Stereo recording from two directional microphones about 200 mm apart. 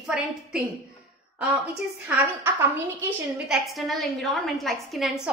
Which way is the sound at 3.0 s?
5° right (ahead or behind).